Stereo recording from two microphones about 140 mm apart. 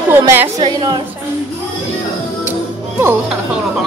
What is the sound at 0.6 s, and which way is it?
Speech, 30° right (ahead or behind).